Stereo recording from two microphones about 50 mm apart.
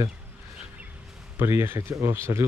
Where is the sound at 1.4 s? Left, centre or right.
Right.